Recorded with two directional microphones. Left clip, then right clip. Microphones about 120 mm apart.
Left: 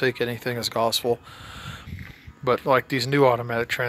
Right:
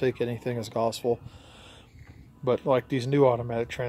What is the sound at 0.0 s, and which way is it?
Speech, 15° right (ahead or behind).